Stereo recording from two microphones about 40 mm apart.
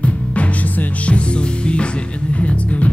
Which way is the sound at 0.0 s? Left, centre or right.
Left.